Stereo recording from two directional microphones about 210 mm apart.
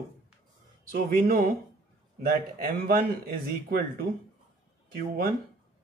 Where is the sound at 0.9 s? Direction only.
45° right (ahead or behind).